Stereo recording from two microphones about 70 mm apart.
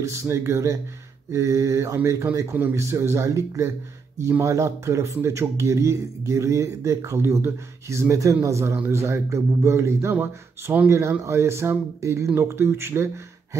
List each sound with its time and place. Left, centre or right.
0.0 s speech: right
10.2 s speech: right
10.9 s speech: right